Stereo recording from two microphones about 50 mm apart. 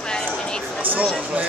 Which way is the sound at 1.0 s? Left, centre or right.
Right.